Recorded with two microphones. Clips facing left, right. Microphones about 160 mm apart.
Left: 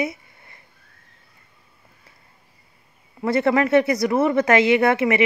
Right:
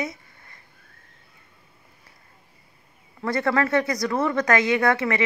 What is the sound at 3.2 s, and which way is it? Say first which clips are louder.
Speech: left 4 dB; 20° left (ahead or behind).